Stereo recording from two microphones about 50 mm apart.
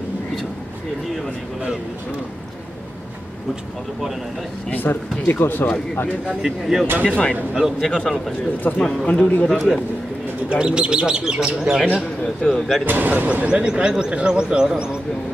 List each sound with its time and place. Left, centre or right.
4.6 s speech: left
6.4 s speech: centre
7.1 s speech: centre
9.5 s a man's voice: centre
10.5 s speech: centre
11.8 s speech: centre
12.5 s a man's voice: centre
12.8 s speech: right
13.6 s speech: centre